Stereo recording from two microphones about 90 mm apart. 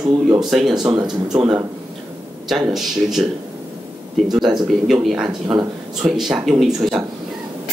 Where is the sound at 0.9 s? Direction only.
50° right (ahead or behind).